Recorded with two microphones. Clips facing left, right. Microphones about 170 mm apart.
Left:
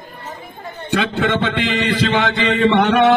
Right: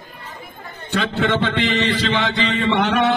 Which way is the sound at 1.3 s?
50° left (ahead or behind).